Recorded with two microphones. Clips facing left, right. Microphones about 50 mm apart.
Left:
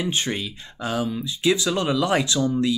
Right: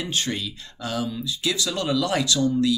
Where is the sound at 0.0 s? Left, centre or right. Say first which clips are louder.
Left 2 dB; left.